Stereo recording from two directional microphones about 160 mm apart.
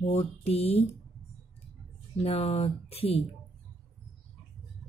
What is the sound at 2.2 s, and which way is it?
Speech, 40° left (ahead or behind).